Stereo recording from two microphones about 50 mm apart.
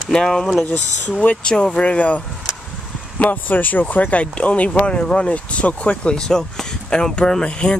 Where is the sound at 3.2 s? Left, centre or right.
Left.